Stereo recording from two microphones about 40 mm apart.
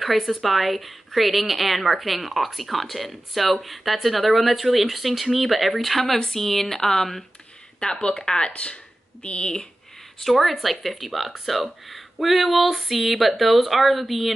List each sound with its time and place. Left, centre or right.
0.0 s speech: centre
7.8 s speech: left
10.2 s speech: centre